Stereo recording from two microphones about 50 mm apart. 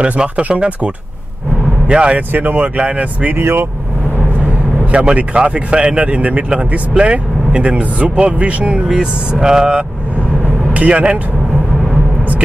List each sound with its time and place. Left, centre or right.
0.0 s speech: right
2.3 s speech: right
2.8 s speech: right
3.3 s speech: right
4.9 s speech: right